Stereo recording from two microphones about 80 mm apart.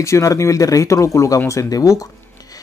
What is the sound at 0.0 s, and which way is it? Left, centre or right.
Speech, left.